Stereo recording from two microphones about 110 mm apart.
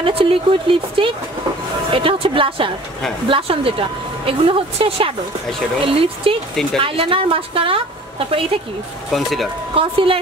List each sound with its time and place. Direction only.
0.0 s a woman's voice: 55° right (ahead or behind)
6.5 s speech: 5° left (ahead or behind)
6.8 s a woman's voice: 55° right (ahead or behind)
9.1 s speech: centre (ahead or behind)
9.8 s a woman's voice: 55° right (ahead or behind)